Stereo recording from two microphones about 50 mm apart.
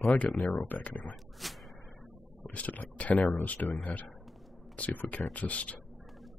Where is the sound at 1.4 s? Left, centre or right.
Centre.